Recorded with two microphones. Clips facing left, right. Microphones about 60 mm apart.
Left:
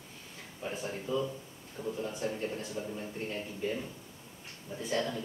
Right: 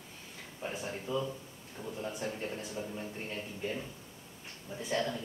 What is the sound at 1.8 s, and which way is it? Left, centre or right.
Speech, centre.